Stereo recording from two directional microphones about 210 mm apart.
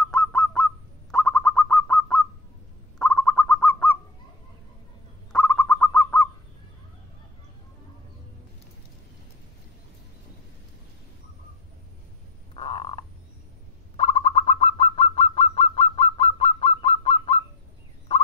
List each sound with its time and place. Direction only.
0.1 s honk: 5° left (ahead or behind)
1.1 s bird: 5° left (ahead or behind)
5.3 s bird: 5° left (ahead or behind)
12.5 s frog: 25° left (ahead or behind)
13.9 s bird: 25° left (ahead or behind)